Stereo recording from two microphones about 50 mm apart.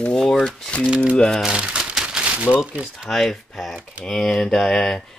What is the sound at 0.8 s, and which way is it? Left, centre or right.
Speech, right.